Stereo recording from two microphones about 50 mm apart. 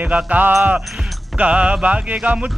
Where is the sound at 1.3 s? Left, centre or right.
Right.